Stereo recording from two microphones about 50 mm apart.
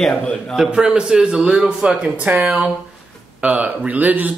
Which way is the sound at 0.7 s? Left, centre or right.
Centre.